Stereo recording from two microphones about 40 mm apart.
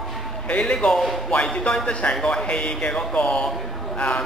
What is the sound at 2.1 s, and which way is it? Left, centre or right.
A man's voice, centre.